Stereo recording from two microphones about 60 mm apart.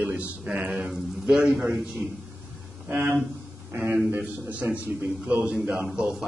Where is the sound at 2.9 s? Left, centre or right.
Right.